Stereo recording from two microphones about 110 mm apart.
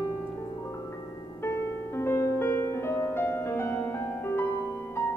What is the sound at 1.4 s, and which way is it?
Music, 25° left (ahead or behind).